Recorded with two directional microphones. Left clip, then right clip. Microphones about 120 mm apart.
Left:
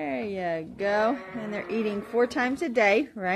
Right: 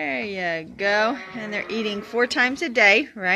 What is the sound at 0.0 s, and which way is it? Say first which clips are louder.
Speech: right 4 dB; centre (ahead or behind).